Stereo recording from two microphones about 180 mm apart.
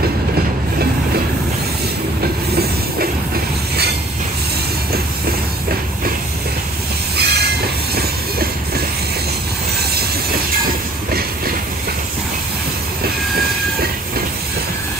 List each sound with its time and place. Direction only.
2.5 s train: 60° right (ahead or behind)
7.2 s train: 65° right (ahead or behind)